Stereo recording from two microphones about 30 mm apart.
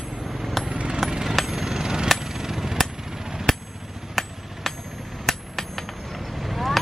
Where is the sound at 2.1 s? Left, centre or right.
Centre.